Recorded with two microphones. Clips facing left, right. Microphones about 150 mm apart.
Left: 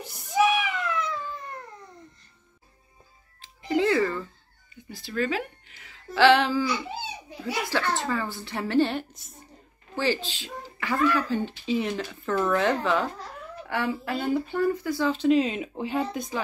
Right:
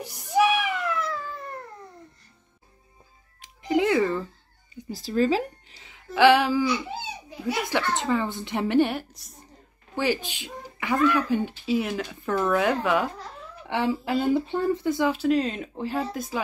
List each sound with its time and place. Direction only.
0.0 s a sound: 15° right (ahead or behind)
3.3 s music: 15° right (ahead or behind)
4.7 s speech: 40° right (ahead or behind)
5.9 s a sound: 15° right (ahead or behind)
7.7 s a woman's voice: 20° right (ahead or behind)
13.7 s a woman's voice: 25° right (ahead or behind)
15.1 s speech: centre (ahead or behind)